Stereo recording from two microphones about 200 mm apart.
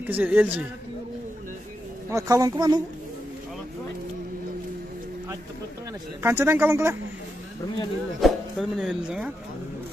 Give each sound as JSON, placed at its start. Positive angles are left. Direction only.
{"t": 0.0, "sound": "speech", "side_deg": -10}
{"t": 2.0, "sound": "speech", "side_deg": -15}
{"t": 6.2, "sound": "speech", "side_deg": -10}
{"t": 8.2, "sound": "speech", "side_deg": 0}